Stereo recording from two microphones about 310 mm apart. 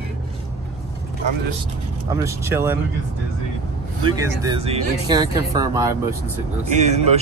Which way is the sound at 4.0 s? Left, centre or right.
Centre.